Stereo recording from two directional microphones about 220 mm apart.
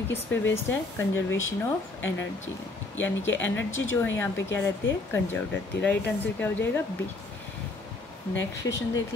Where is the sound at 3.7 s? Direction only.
60° left (ahead or behind).